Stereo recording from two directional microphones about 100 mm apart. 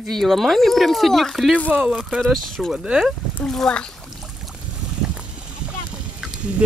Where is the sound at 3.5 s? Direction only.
5° left (ahead or behind).